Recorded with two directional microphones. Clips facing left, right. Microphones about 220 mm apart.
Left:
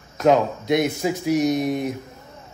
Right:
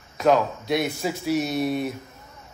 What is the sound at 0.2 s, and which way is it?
A man's voice, 20° left (ahead or behind).